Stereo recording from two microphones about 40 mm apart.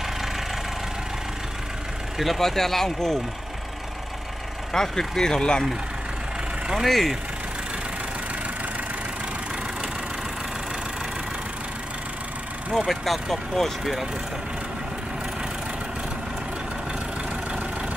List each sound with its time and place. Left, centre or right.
2.1 s speech: centre
4.7 s speech: centre
6.9 s speech: centre
12.7 s speech: centre